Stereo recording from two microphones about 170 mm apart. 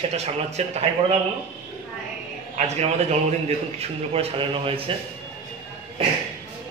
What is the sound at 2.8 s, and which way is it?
A man's voice, 40° right (ahead or behind).